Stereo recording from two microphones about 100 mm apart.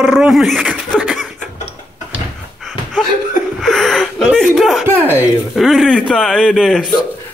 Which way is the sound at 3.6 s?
5° left (ahead or behind).